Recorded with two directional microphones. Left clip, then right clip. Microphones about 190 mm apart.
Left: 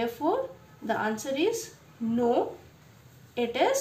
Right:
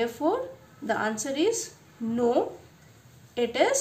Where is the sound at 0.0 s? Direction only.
25° right (ahead or behind).